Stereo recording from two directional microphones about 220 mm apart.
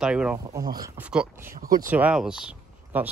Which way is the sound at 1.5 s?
40° right (ahead or behind).